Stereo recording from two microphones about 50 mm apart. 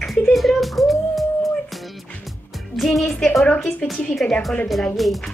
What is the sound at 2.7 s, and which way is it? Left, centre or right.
Speech, centre.